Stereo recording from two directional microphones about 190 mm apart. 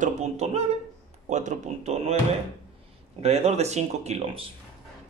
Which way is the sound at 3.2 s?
35° right (ahead or behind).